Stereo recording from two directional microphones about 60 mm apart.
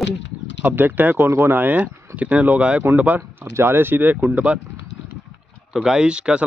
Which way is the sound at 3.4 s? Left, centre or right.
Right.